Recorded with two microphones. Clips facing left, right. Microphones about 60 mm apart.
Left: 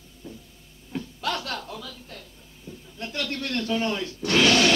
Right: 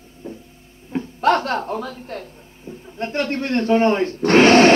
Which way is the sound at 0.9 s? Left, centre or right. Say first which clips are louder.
Right 12 dB; right.